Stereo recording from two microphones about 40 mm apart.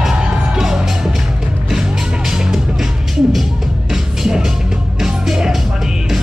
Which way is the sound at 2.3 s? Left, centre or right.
Centre.